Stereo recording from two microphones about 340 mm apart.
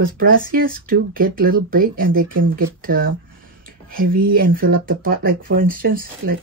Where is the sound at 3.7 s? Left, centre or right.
Right.